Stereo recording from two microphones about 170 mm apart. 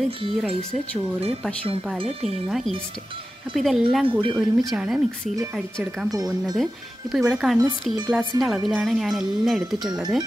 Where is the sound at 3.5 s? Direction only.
Centre (ahead or behind).